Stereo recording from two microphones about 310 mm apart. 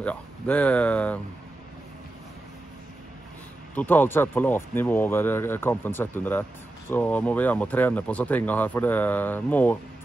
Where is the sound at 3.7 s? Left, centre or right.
Centre.